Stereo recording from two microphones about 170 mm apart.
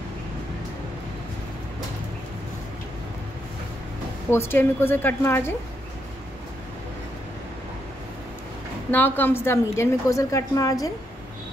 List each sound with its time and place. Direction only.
4.3 s a woman's voice: 15° left (ahead or behind)
8.9 s a woman's voice: 10° left (ahead or behind)